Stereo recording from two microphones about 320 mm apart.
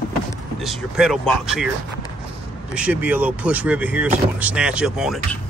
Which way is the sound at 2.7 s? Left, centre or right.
Centre.